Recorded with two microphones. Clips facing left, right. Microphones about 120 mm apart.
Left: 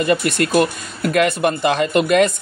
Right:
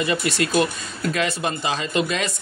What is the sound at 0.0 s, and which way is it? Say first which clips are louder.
Speech: left 5 dB; 50° left (ahead or behind).